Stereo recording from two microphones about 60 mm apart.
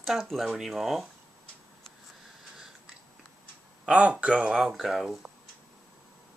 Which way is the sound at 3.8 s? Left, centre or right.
Right.